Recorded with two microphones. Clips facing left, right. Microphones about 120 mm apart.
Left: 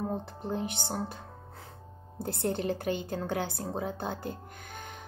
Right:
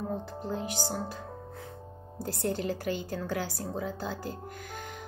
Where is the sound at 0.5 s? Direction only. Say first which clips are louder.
Even; 25° left (ahead or behind).